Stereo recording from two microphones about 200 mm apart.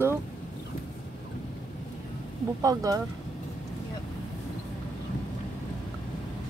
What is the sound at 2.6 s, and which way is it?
Speech, 15° right (ahead or behind).